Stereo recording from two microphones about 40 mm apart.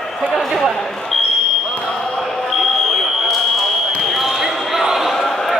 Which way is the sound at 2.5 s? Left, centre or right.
Centre.